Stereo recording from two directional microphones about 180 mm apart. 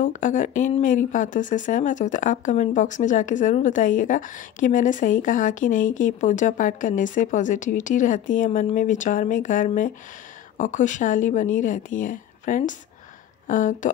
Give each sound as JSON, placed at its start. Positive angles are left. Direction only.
{"t": 0.0, "sound": "speech", "side_deg": 45}